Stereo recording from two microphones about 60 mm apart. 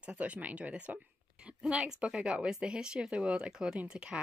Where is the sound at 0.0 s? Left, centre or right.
Right.